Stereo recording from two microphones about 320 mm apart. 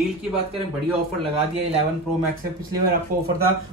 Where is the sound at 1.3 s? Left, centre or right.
Centre.